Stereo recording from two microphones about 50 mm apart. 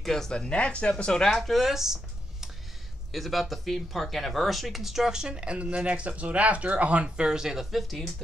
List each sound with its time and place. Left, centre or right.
0.0 s speech: centre
1.4 s speech: centre
3.1 s speech: centre